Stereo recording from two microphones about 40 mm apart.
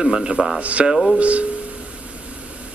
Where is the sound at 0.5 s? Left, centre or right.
Right.